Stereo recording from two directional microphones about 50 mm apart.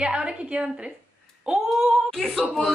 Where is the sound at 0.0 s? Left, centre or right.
Centre.